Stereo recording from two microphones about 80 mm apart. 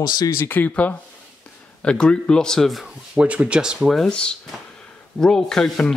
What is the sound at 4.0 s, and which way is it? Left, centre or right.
Speech, centre.